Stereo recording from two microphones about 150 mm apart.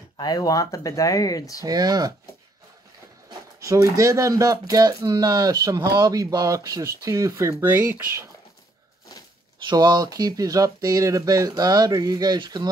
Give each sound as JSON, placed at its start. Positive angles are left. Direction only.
{"t": 0.2, "sound": "speech", "side_deg": 25}
{"t": 1.6, "sound": "speech", "side_deg": -25}
{"t": 3.3, "sound": "speech", "side_deg": -20}
{"t": 9.7, "sound": "speech", "side_deg": -25}